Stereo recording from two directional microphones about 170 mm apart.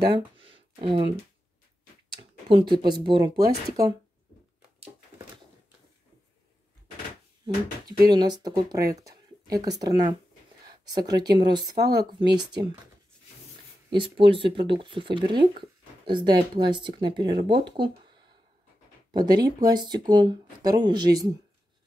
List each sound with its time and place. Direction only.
0.0 s a sound: 25° right (ahead or behind)
2.2 s a sound: 40° right (ahead or behind)
2.5 s speech: 25° right (ahead or behind)
8.1 s speech: 25° right (ahead or behind)
11.7 s speech: 70° right (ahead or behind)
12.0 s speech: 25° right (ahead or behind)
13.8 s speech: 30° right (ahead or behind)